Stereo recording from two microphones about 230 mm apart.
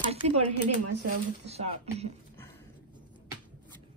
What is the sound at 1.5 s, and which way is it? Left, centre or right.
Speech, right.